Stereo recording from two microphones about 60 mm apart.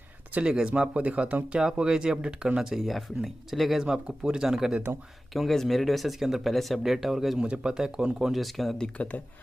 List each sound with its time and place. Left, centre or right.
0.3 s speech: centre
3.8 s speech: centre
5.3 s speech: centre
8.7 s speech: centre